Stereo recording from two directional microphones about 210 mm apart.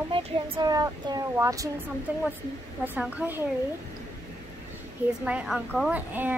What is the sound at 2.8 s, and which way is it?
Speech, 5° right (ahead or behind).